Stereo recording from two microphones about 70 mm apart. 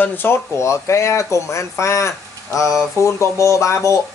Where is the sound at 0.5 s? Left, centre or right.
Left.